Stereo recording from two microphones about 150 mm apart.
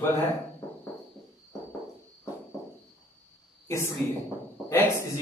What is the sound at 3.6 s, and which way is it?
A woman's voice, 20° left (ahead or behind).